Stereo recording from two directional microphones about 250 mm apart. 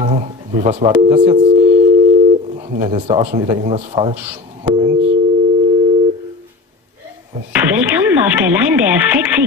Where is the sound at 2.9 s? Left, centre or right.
Right.